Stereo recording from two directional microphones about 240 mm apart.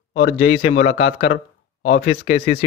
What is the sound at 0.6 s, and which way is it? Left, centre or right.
Speech, left.